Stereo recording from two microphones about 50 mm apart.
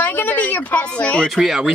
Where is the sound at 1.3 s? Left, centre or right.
Centre.